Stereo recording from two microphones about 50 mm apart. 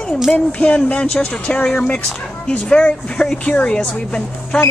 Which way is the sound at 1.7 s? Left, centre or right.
Centre.